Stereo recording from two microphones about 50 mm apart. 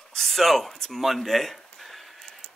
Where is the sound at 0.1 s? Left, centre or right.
Centre.